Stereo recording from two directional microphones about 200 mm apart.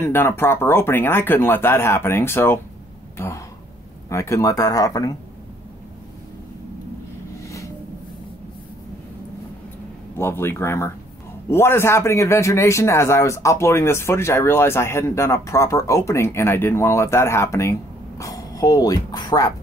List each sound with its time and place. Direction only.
0.0 s a man's voice: 10° left (ahead or behind)
7.4 s a sound: 15° left (ahead or behind)
10.1 s a man's voice: 10° left (ahead or behind)